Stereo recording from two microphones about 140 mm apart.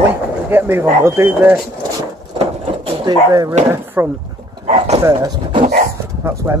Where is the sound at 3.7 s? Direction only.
15° right (ahead or behind).